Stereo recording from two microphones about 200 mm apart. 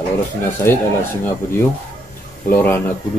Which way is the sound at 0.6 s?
10° left (ahead or behind).